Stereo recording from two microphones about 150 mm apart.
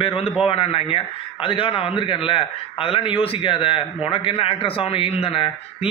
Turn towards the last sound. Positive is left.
turn(degrees=40)  # may be behind; listen again after turning